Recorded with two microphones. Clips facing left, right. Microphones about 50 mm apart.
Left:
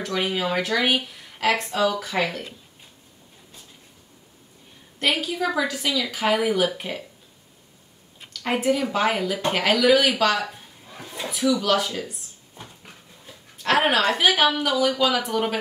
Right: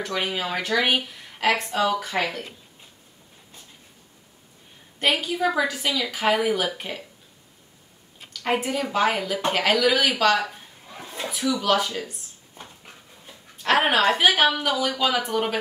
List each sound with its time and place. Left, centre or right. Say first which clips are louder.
0.0 s a woman's voice: left 2 dB; centre
4.9 s a woman's voice: even; centre
8.3 s speech: left 2 dB; centre